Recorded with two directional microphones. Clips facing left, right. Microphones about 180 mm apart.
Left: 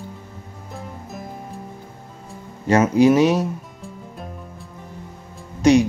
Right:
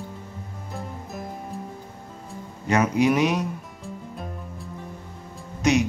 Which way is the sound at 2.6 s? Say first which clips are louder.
Left 6 dB; 30° left (ahead or behind).